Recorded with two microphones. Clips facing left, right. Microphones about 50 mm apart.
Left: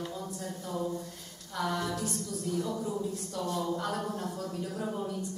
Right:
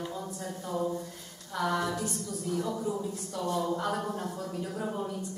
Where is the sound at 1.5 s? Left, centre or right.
Centre.